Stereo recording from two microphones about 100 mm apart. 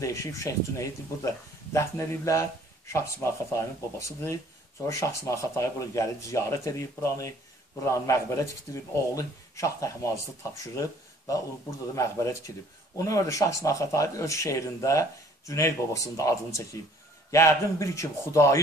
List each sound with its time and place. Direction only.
0.0 s speech: 30° left (ahead or behind)
3.5 s speech: 30° left (ahead or behind)